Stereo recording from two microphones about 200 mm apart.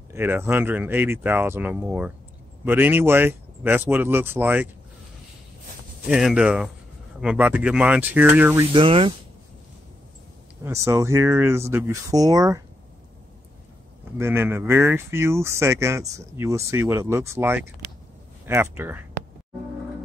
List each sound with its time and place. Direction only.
0.1 s speech: 10° right (ahead or behind)
6.0 s speech: 5° right (ahead or behind)
8.7 s speech: 25° right (ahead or behind)
10.6 s speech: 15° right (ahead or behind)
14.1 s speech: 10° right (ahead or behind)